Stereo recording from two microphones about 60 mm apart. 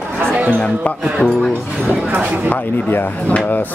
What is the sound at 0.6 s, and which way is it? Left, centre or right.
Speech, centre.